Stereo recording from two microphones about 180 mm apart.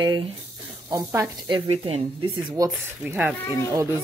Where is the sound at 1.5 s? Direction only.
35° right (ahead or behind).